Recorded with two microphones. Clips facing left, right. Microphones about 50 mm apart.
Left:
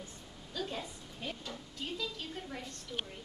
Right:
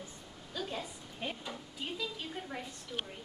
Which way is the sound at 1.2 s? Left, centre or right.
Centre.